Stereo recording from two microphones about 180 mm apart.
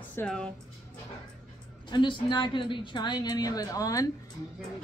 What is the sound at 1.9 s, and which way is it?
A woman's voice, 25° left (ahead or behind).